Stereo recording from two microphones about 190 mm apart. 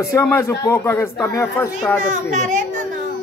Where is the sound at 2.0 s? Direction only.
40° right (ahead or behind).